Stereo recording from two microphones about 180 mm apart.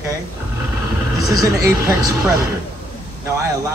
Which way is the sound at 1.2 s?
20° right (ahead or behind).